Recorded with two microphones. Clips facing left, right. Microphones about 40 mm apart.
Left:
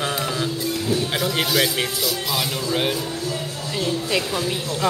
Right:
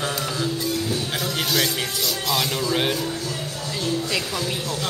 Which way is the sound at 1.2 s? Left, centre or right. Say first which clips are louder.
Left 1 dB; centre.